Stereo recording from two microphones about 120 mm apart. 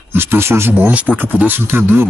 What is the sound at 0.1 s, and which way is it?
Speech, 20° right (ahead or behind).